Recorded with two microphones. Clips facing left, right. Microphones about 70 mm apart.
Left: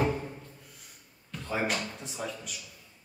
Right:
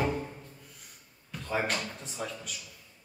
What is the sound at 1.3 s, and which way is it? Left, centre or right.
Speech, centre.